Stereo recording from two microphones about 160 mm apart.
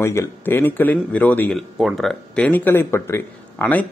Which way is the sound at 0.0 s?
15° left (ahead or behind).